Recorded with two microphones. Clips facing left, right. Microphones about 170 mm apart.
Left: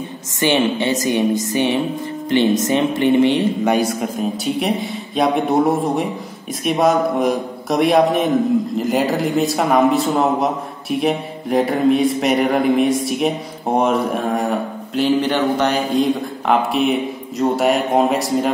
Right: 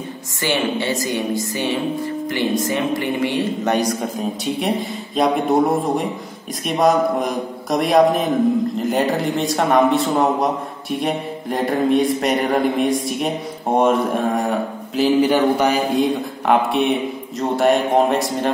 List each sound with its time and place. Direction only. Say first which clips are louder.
0.4 s speech: left 4 dB; 20° left (ahead or behind)
4.6 s a man's voice: left 1 dB; centre (ahead or behind)